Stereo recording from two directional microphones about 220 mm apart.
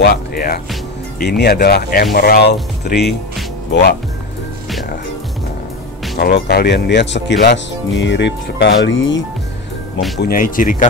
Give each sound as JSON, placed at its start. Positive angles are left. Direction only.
{"t": 0.0, "sound": "speech", "side_deg": 45}
{"t": 6.1, "sound": "speech", "side_deg": 50}
{"t": 10.2, "sound": "speech", "side_deg": 40}